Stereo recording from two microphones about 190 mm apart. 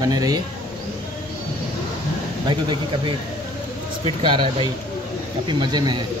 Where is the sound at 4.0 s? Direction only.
25° right (ahead or behind).